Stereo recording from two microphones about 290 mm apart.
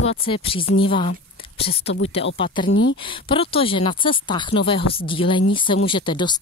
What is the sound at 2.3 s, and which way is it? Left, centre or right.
Speech, centre.